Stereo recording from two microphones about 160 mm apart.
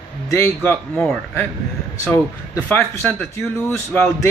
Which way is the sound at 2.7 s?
10° left (ahead or behind).